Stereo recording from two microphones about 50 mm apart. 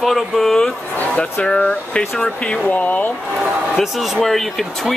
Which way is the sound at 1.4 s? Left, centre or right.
Centre.